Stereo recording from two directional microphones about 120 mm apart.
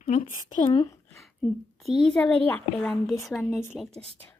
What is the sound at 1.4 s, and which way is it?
A child's voice, centre (ahead or behind).